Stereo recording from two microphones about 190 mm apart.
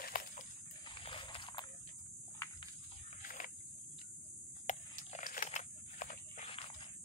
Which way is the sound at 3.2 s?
45° left (ahead or behind).